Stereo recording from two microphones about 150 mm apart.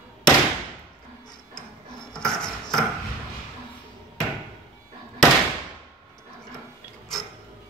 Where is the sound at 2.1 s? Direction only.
5° left (ahead or behind).